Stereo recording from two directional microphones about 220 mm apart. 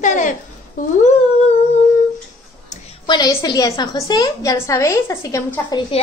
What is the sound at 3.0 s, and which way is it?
A woman's voice, 20° left (ahead or behind).